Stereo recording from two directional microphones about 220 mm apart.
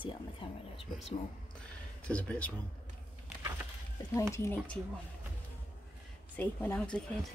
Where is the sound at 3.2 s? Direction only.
10° right (ahead or behind).